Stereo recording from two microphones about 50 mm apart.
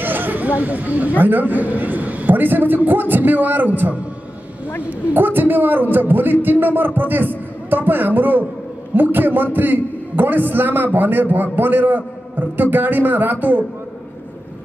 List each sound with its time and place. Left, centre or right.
0.0 s a man's voice: right